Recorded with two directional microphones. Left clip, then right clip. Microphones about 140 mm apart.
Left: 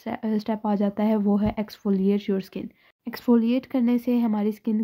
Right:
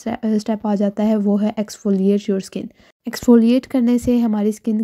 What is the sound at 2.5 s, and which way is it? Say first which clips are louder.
Speech: right 6 dB; 35° right (ahead or behind).